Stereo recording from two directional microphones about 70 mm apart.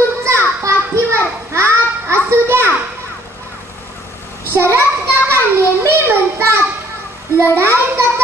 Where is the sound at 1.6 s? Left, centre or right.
Right.